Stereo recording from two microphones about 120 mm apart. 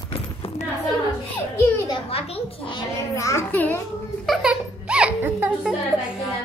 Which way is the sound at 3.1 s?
25° left (ahead or behind).